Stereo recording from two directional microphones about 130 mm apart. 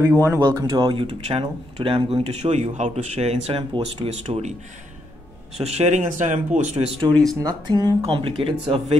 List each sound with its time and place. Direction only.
0.4 s speech: 35° right (ahead or behind); by 4.6 s 55° right (ahead or behind)
5.6 s speech: 55° right (ahead or behind); by 6.9 s 70° right (ahead or behind)
7.1 s speech: 5° left (ahead or behind)
7.4 s speech: 30° right (ahead or behind)
8.0 s speech: 45° right (ahead or behind)